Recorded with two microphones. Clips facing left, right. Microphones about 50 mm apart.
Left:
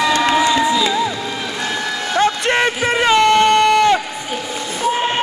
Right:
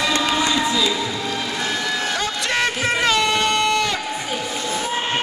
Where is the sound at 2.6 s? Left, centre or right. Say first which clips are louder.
Left 2 dB; centre.